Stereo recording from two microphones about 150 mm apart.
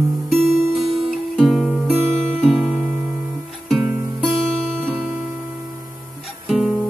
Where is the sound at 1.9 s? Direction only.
15° right (ahead or behind).